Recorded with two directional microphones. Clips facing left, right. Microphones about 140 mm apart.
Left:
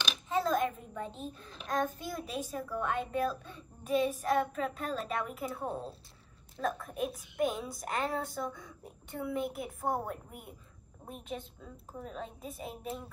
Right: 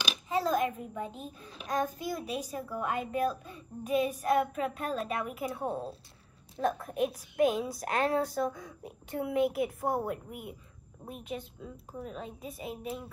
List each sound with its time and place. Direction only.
0.0 s a child's voice: centre (ahead or behind)
7.0 s a child's voice: centre (ahead or behind)